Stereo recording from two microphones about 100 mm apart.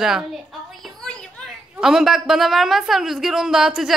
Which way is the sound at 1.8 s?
5° right (ahead or behind).